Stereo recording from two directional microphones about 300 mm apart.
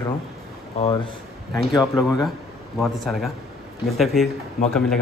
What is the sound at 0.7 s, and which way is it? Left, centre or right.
Speech, centre.